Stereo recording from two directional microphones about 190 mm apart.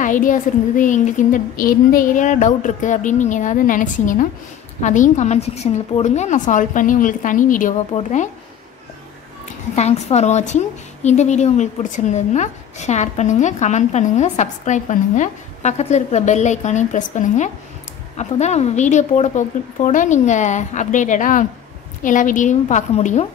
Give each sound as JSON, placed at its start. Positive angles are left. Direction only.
{"t": 0.0, "sound": "a woman's voice", "side_deg": 45}
{"t": 9.8, "sound": "a woman's voice", "side_deg": 35}